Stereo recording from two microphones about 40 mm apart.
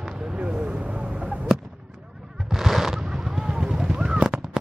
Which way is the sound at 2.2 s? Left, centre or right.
Centre.